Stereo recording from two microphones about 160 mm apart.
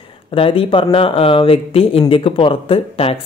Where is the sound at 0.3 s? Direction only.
35° left (ahead or behind).